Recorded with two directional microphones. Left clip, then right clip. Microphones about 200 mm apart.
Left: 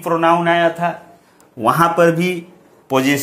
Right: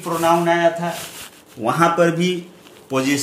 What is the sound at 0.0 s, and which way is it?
Speech, 40° left (ahead or behind).